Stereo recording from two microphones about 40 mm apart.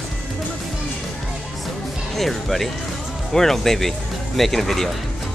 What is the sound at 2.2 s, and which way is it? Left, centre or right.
Speech, centre.